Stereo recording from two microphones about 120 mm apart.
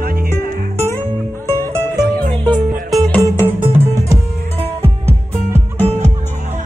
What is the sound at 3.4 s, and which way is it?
Music, 15° right (ahead or behind).